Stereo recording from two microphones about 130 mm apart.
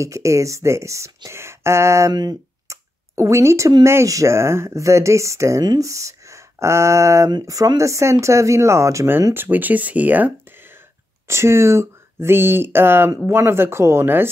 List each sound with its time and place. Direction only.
0.0 s speech: 25° right (ahead or behind)